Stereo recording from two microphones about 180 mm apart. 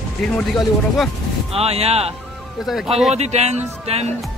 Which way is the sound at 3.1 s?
35° right (ahead or behind).